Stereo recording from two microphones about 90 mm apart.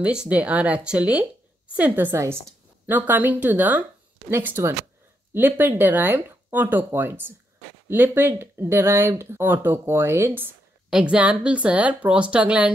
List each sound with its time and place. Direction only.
0.0 s a woman's voice: 10° right (ahead or behind)
10.9 s a woman's voice: 10° right (ahead or behind)